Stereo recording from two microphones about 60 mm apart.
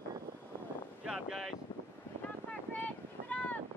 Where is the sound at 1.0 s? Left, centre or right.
Centre.